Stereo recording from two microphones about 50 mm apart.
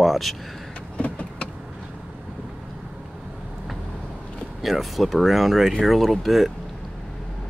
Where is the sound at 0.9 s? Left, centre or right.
Left.